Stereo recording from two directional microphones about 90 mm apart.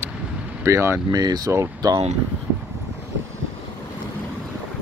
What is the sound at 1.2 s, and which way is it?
Speech, 45° right (ahead or behind).